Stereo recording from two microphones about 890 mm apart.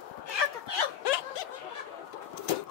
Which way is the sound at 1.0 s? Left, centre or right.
Left.